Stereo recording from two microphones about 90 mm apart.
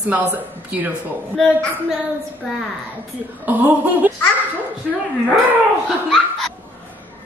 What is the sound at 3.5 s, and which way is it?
Speech, 20° right (ahead or behind).